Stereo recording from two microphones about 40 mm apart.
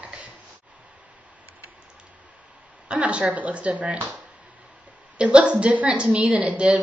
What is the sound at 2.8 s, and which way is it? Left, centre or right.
A woman's voice, right.